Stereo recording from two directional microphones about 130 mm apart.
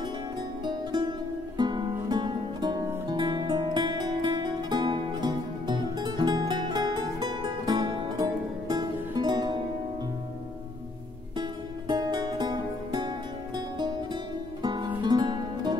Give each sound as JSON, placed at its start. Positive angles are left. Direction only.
{"t": 0.7, "sound": "music", "side_deg": -35}
{"t": 11.9, "sound": "music", "side_deg": -35}
{"t": 14.6, "sound": "music", "side_deg": -35}